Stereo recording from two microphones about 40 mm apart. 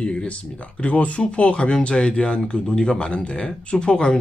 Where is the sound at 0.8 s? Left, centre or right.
Left.